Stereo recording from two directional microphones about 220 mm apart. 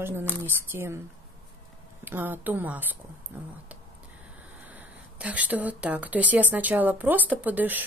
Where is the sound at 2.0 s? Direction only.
10° right (ahead or behind).